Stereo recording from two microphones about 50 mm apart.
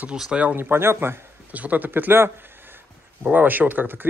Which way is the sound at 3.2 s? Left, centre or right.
Right.